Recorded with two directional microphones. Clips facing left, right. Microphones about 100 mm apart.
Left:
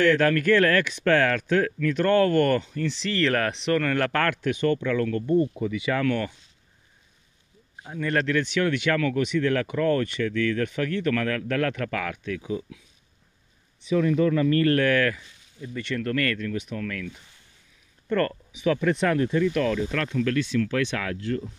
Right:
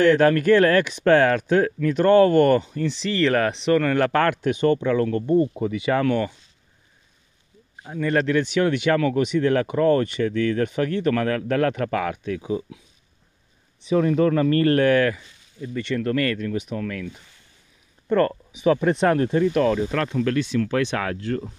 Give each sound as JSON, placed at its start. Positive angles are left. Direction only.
{"t": 0.0, "sound": "speech", "side_deg": -20}
{"t": 5.8, "sound": "speech", "side_deg": -30}
{"t": 7.8, "sound": "speech", "side_deg": -5}
{"t": 13.9, "sound": "speech", "side_deg": -45}
{"t": 15.6, "sound": "speech", "side_deg": 0}
{"t": 16.0, "sound": "speech", "side_deg": -15}
{"t": 18.6, "sound": "speech", "side_deg": -30}
{"t": 21.0, "sound": "speech", "side_deg": -45}